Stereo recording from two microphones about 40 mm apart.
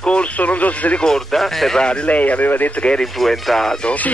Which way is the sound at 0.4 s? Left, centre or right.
Left.